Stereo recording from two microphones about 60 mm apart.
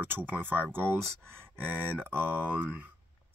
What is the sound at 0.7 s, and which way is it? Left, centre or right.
Speech, right.